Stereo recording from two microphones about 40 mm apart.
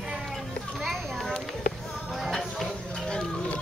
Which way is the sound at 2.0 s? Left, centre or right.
Centre.